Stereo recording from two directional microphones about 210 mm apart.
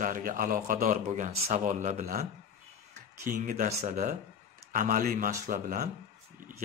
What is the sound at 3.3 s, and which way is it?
Speech, 40° right (ahead or behind).